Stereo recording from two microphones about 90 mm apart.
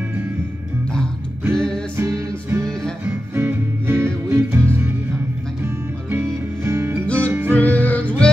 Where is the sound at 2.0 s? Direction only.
35° right (ahead or behind).